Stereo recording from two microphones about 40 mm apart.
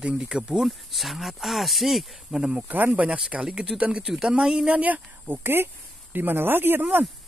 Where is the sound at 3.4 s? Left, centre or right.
Right.